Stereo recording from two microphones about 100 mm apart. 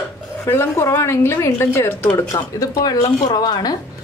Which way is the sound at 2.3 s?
35° left (ahead or behind).